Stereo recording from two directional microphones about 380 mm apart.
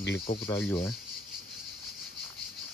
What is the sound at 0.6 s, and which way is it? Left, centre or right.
Speech, centre.